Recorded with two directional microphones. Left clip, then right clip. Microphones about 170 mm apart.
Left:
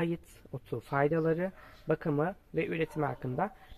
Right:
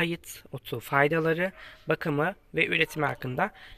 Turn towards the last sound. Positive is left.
turn(degrees=-15)  # may be behind; listen again after turning